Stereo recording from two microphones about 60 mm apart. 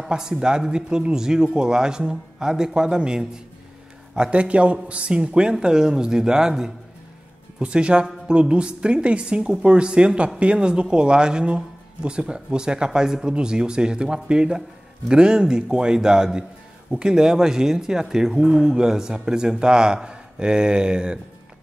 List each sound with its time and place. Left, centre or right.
0.0 s speech: centre